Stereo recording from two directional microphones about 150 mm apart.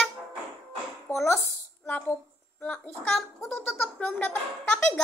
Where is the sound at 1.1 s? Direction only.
15° left (ahead or behind).